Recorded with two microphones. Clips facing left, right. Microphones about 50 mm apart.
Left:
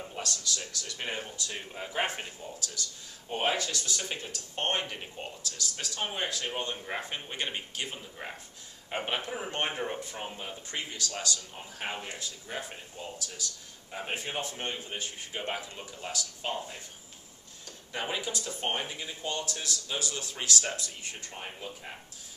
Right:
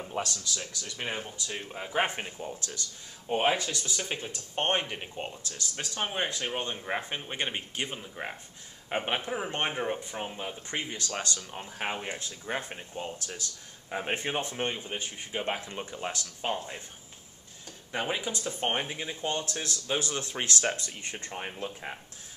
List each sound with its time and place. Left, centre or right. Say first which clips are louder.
0.1 s speech: right 3 dB; centre
1.9 s speech: right 3 dB; right
5.4 s speech: even; right; by 10.5 s centre
10.7 s speech: right 3 dB; right
11.0 s speech: right 1 dB; right
11.8 s speech: right 3 dB; right
15.6 s speech: right 5 dB; right
17.9 s speech: right 2 dB; centre; by 21.3 s right
21.3 s speech: right 6 dB; right